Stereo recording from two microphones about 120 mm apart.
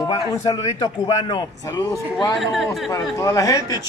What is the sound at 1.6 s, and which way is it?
Speech, 25° left (ahead or behind).